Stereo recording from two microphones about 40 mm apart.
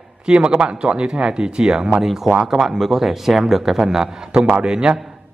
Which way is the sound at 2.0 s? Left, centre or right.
Centre.